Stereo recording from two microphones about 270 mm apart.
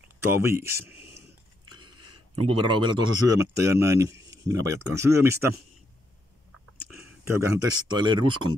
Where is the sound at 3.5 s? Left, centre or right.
Centre.